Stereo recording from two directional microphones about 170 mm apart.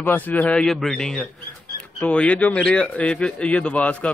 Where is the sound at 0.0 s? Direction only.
10° left (ahead or behind).